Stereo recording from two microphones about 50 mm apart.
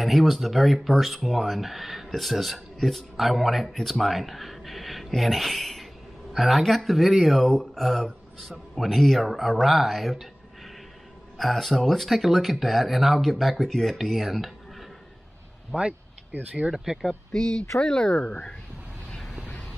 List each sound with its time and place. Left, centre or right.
0.0 s speech: centre
11.3 s speech: centre
15.7 s a sound: right
16.5 s speech: right
17.3 s speech: centre
19.0 s vehicle: centre